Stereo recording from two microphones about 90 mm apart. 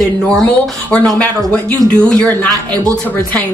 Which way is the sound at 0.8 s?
15° left (ahead or behind).